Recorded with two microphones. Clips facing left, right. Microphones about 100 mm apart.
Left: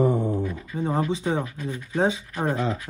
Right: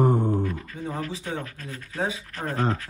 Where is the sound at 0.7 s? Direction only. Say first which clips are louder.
Left 7 dB; 35° left (ahead or behind).